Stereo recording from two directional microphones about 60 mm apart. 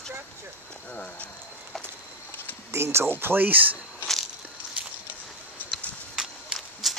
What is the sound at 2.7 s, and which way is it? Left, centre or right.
Speech, right.